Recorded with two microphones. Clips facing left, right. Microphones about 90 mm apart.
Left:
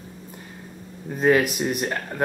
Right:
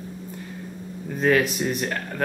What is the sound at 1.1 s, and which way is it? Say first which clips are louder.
Speech: left 1 dB; 5° left (ahead or behind).